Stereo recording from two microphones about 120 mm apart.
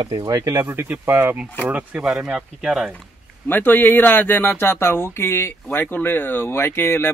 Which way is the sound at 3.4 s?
15° left (ahead or behind).